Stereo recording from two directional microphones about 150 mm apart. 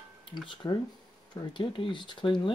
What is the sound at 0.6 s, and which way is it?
Speech, 25° left (ahead or behind).